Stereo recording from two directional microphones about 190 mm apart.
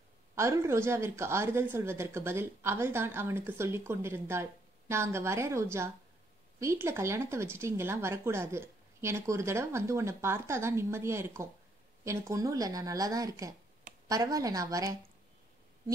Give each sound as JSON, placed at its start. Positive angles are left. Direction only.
{"t": 0.4, "sound": "a woman's voice", "side_deg": -15}